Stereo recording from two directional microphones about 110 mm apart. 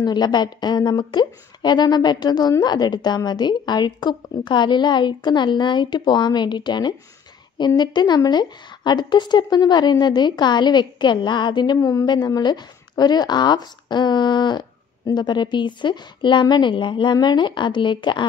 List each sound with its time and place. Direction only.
0.0 s a woman's voice: 40° left (ahead or behind)